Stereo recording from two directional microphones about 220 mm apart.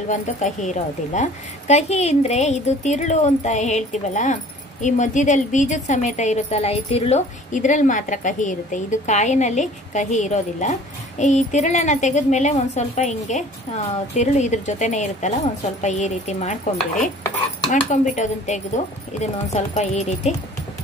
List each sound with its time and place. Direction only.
0.1 s a woman's voice: 35° left (ahead or behind)